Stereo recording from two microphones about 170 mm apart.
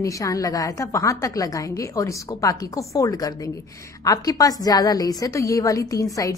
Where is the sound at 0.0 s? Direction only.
20° left (ahead or behind).